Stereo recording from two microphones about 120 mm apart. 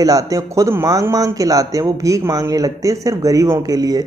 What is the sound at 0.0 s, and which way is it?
Speech, 30° right (ahead or behind).